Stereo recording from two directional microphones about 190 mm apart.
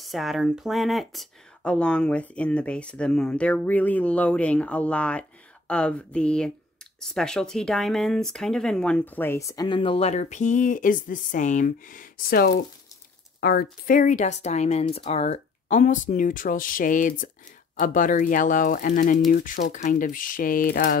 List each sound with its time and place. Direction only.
0.0 s speech: centre (ahead or behind); by 21.0 s 55° left (ahead or behind)